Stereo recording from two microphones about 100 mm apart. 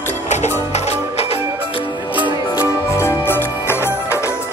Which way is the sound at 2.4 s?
35° left (ahead or behind).